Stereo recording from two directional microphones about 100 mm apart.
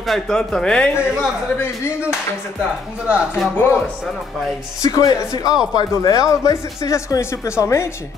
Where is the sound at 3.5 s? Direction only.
25° left (ahead or behind).